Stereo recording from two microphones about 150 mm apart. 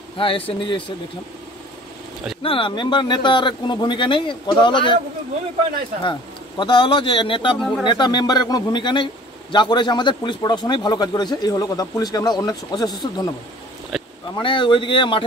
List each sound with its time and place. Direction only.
0.2 s speech: 35° left (ahead or behind)
2.4 s speech: 35° left (ahead or behind)
6.6 s a man's voice: 30° left (ahead or behind)
13.9 s a sound: centre (ahead or behind)
14.3 s speech: 30° left (ahead or behind)